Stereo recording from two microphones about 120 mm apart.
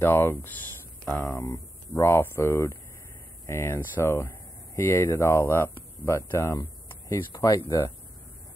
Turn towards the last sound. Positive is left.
turn(degrees=25)  # may be behind; listen again after turning